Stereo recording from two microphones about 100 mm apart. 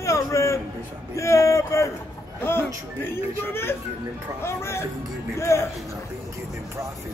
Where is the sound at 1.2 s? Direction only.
30° left (ahead or behind).